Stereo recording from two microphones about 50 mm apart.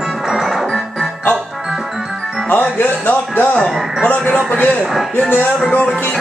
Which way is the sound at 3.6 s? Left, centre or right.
Centre.